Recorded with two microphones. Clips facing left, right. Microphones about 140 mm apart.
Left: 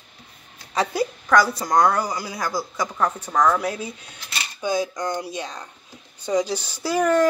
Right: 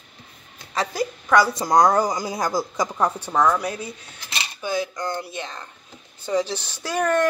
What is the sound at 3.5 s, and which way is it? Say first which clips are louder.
Speech: left 1 dB; 5° left (ahead or behind).